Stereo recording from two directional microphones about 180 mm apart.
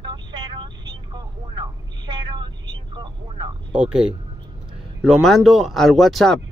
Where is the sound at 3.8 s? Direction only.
5° right (ahead or behind).